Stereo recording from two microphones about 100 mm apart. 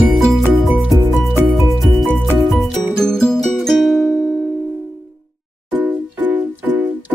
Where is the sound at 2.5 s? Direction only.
5° left (ahead or behind).